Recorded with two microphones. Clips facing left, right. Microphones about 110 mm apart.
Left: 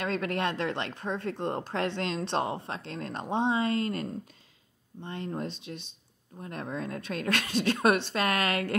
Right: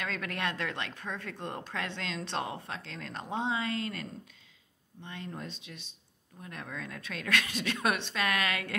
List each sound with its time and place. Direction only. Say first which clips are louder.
0.0 s speech: left 6 dB; 30° left (ahead or behind)